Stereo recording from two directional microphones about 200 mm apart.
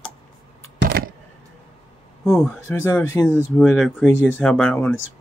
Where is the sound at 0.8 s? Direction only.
50° right (ahead or behind).